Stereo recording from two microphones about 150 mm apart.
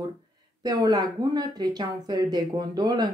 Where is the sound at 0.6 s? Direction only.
25° right (ahead or behind).